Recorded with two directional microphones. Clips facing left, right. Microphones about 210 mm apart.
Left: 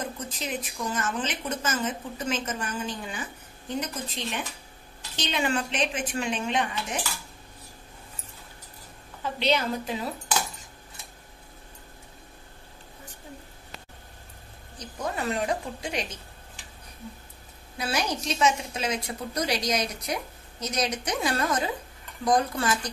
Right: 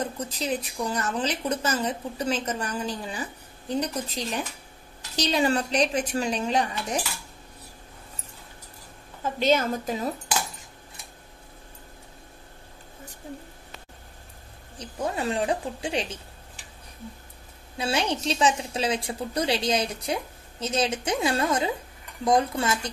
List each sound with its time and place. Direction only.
0.0 s a woman's voice: 35° right (ahead or behind)
9.2 s a woman's voice: 45° right (ahead or behind)
14.8 s a woman's voice: 30° right (ahead or behind)
17.7 s a woman's voice: 30° right (ahead or behind)